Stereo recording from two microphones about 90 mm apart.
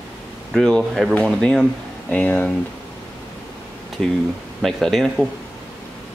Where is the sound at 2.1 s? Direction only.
15° left (ahead or behind).